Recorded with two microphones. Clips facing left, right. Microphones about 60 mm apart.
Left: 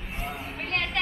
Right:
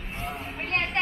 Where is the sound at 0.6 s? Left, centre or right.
Right.